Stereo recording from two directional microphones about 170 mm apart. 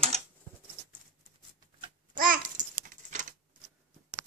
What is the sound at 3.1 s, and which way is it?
Typewriter, 50° right (ahead or behind).